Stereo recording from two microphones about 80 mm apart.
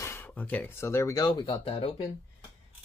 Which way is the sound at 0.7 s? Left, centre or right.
Left.